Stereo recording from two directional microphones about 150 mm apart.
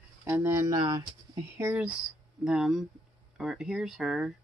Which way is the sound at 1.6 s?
10° right (ahead or behind).